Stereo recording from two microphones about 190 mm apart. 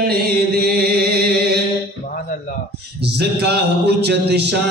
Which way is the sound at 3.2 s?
60° right (ahead or behind).